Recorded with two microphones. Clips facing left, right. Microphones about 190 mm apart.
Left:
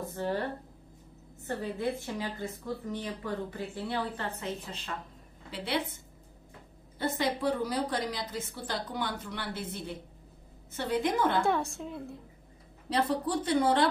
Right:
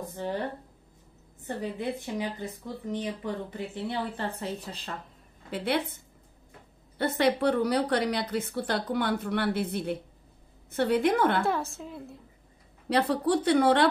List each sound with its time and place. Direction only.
0.1 s speech: 15° right (ahead or behind)
1.6 s a woman's voice: 15° right (ahead or behind); by 4.9 s 35° right (ahead or behind)
5.5 s a woman's voice: 55° right (ahead or behind)
7.0 s a woman's voice: 65° right (ahead or behind)
11.4 s a woman's voice: centre (ahead or behind)
12.9 s a woman's voice: 65° right (ahead or behind)